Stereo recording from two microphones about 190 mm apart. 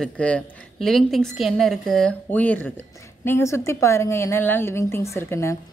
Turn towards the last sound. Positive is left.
turn(degrees=15)  # may be behind; listen again after turning